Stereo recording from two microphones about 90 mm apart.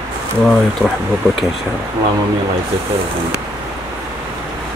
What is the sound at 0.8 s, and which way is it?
Speech, 20° right (ahead or behind).